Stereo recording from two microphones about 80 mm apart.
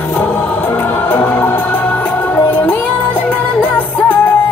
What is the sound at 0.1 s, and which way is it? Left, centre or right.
Music, left.